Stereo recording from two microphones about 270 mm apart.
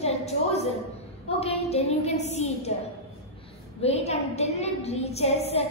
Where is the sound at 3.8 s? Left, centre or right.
Left.